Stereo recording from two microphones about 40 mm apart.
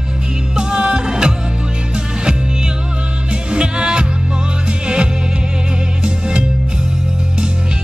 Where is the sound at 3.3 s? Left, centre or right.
Right.